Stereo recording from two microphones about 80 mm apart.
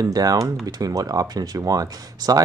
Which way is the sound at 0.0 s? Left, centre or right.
Right.